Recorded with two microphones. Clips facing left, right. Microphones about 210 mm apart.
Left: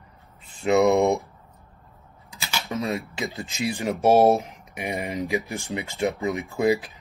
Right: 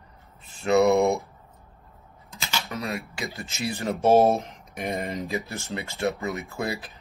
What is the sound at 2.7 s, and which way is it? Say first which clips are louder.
Speech: left 8 dB; 25° left (ahead or behind).